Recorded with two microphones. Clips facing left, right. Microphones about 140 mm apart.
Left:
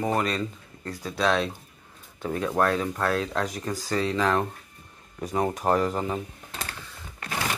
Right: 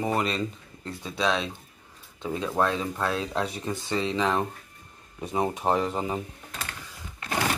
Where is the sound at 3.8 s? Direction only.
Centre (ahead or behind).